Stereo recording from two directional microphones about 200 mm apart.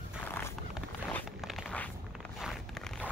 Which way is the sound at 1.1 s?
5° left (ahead or behind).